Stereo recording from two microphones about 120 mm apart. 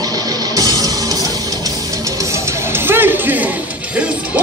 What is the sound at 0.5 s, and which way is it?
Music, 30° right (ahead or behind).